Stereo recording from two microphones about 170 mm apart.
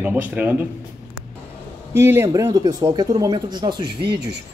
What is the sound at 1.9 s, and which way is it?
Speech, 15° right (ahead or behind).